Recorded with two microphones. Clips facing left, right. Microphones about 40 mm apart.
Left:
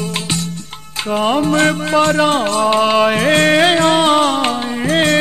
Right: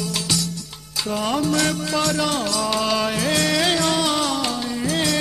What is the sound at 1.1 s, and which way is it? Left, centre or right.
Music, left.